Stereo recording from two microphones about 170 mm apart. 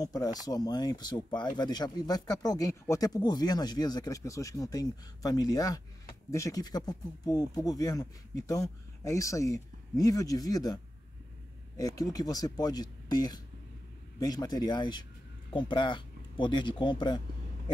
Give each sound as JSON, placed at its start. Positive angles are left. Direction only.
{"t": 0.0, "sound": "speech", "side_deg": 20}